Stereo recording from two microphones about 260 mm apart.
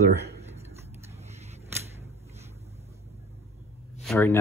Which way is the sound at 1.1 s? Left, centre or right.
Right.